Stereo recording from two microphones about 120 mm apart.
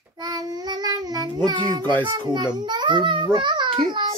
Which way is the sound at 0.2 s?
35° right (ahead or behind).